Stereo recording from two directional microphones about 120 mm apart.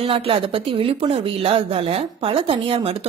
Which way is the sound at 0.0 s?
50° right (ahead or behind).